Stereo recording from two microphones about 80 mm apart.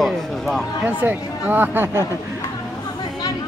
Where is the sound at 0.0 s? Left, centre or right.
Centre.